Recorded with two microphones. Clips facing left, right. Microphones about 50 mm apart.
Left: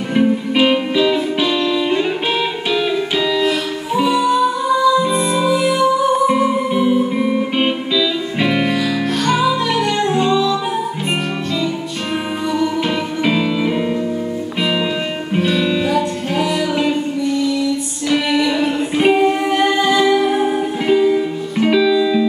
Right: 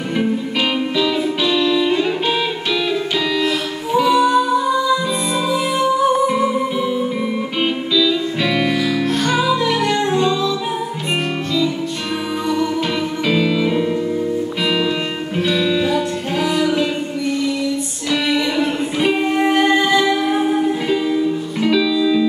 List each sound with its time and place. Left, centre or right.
0.2 s music: centre
3.4 s music: centre
9.8 s music: left
13.2 s music: centre
18.6 s music: left
19.4 s music: right
21.1 s music: centre